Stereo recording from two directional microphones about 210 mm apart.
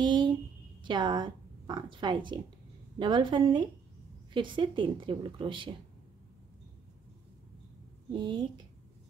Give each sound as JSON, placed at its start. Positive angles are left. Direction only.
{"t": 0.0, "sound": "a sound", "side_deg": -20}
{"t": 0.8, "sound": "a woman's voice", "side_deg": -20}
{"t": 8.1, "sound": "a woman's voice", "side_deg": -20}